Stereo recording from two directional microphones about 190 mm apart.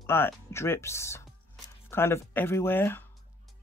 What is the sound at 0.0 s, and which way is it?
Speech, 15° left (ahead or behind).